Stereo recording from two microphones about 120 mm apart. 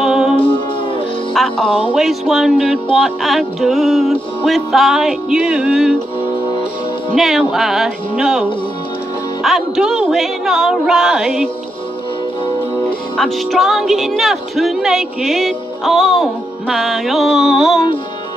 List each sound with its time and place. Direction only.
0.0 s music: 5° right (ahead or behind)
0.4 s music: 45° left (ahead or behind)
1.3 s music: centre (ahead or behind)
2.0 s speech: centre (ahead or behind)
7.2 s speech: centre (ahead or behind)
13.2 s speech: centre (ahead or behind)